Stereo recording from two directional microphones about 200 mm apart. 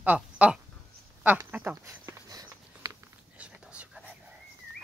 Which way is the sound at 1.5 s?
10° right (ahead or behind).